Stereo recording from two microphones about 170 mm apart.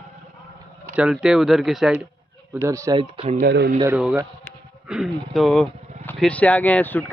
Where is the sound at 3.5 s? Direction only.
80° right.